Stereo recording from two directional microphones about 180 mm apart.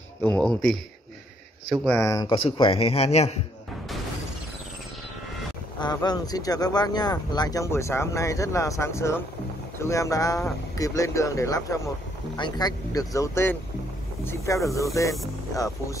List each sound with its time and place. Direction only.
0.2 s speech: 5° left (ahead or behind)
2.3 s a man's voice: 30° left (ahead or behind)
5.8 s speech: 25° left (ahead or behind)